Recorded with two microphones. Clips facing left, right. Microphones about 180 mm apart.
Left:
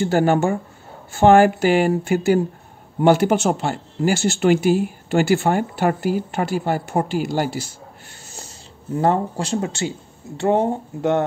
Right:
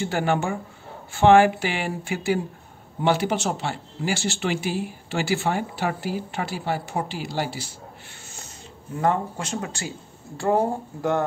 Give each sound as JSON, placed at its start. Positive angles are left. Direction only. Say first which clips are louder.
{"t": 0.0, "sound": "speech", "louder": "left 7 dB", "side_deg": 40}
{"t": 8.4, "sound": "speech", "louder": "left 2 dB", "side_deg": 35}